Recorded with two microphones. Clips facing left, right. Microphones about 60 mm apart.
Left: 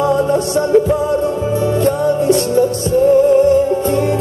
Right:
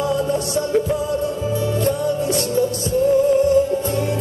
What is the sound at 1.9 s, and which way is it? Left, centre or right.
Music, left.